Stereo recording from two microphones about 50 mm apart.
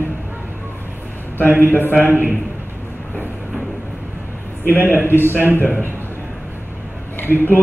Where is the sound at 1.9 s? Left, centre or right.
Left.